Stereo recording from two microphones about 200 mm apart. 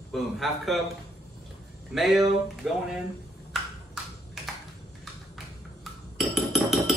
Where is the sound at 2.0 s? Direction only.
Centre (ahead or behind).